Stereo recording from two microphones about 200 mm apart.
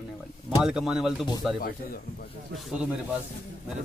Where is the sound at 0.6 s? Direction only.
5° right (ahead or behind).